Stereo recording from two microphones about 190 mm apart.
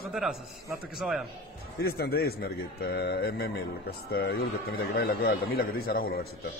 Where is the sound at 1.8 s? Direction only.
55° left (ahead or behind).